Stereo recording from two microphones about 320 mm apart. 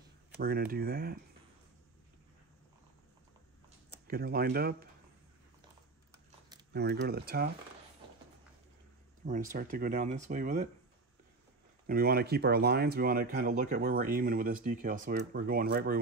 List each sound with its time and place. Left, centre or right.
0.4 s speech: right
4.1 s speech: right
6.7 s speech: right
9.2 s speech: right
11.9 s speech: right